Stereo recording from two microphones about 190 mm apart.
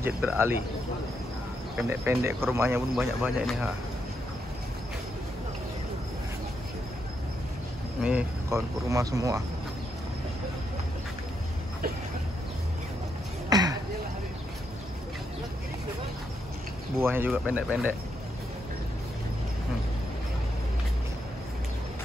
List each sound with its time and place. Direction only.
0.0 s speech: 10° right (ahead or behind)
1.8 s speech: 10° right (ahead or behind)
3.0 s speech: 5° right (ahead or behind)
8.0 s speech: 5° right (ahead or behind)
13.5 s a sound: 20° right (ahead or behind)
17.0 s speech: 10° right (ahead or behind)